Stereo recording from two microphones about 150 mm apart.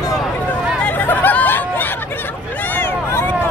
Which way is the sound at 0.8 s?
10° left (ahead or behind).